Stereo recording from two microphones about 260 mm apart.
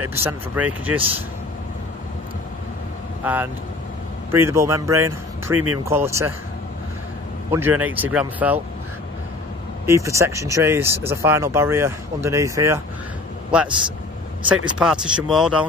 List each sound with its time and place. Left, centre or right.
0.2 s speech: centre
3.2 s speech: centre
7.5 s speech: centre
9.8 s speech: centre
14.8 s speech: centre